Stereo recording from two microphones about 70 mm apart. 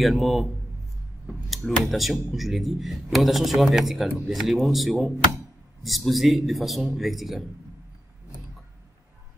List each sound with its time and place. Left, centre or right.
0.0 s speech: centre